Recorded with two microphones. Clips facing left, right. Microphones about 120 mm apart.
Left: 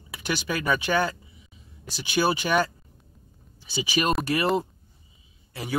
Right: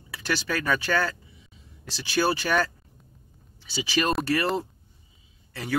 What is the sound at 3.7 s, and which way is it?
Speech, 15° left (ahead or behind).